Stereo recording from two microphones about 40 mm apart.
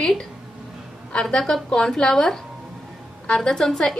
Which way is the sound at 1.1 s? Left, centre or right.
Left.